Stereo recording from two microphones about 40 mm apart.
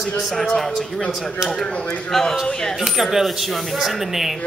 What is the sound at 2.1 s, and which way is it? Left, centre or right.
Speech, centre.